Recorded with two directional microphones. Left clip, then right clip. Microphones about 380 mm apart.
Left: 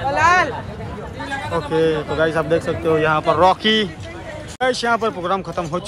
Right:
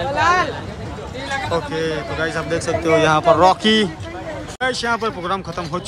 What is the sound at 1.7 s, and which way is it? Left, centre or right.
A man's voice, centre.